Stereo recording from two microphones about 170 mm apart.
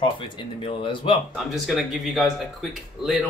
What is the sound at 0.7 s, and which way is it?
Speech, 30° left (ahead or behind).